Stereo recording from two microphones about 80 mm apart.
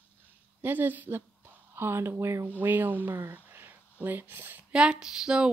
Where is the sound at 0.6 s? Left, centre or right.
Right.